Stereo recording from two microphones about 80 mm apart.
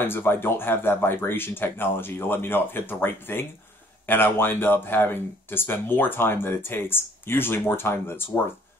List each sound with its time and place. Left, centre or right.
0.0 s speech: left